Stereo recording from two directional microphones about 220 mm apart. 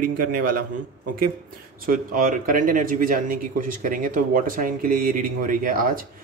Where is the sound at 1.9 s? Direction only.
40° right (ahead or behind).